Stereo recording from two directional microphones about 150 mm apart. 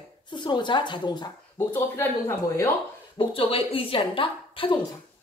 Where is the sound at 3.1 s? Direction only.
40° left (ahead or behind).